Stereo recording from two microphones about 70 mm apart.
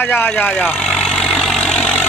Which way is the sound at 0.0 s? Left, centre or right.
Left.